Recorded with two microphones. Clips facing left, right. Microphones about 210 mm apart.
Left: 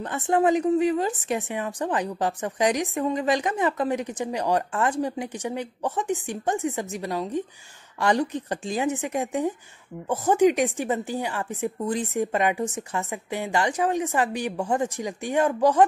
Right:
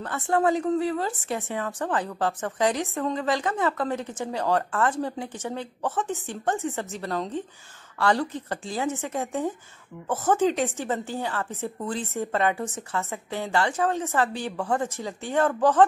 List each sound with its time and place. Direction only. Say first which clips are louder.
0.0 s a woman's voice: left 2 dB; 20° left (ahead or behind)